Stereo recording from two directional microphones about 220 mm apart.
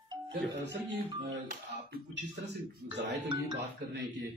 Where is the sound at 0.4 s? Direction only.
50° right (ahead or behind).